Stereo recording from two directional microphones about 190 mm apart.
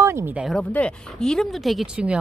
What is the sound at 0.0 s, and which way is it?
Speech, 15° right (ahead or behind).